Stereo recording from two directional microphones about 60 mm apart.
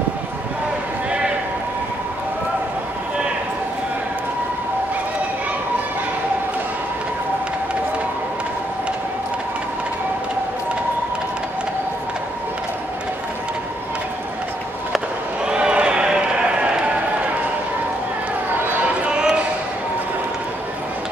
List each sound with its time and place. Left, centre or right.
15.4 s run: centre
19.0 s basketball bounce: centre